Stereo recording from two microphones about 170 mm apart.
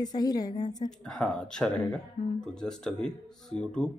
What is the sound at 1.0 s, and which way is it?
Speech, 5° left (ahead or behind).